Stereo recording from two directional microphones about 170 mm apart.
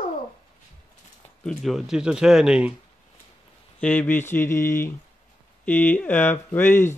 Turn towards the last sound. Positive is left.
turn(degrees=15)  # may be behind; listen again after turning